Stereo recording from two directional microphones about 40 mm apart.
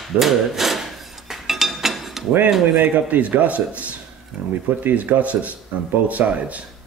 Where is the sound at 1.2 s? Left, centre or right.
Centre.